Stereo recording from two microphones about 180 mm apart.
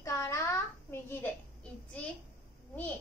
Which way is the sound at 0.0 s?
15° left (ahead or behind).